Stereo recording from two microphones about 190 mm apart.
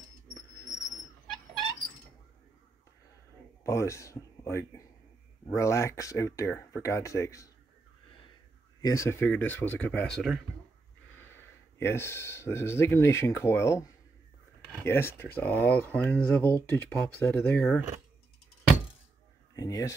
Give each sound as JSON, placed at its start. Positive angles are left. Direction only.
{"t": 3.6, "sound": "speech", "side_deg": 15}
{"t": 8.8, "sound": "speech", "side_deg": 15}
{"t": 11.1, "sound": "speech", "side_deg": 10}
{"t": 19.5, "sound": "speech", "side_deg": 20}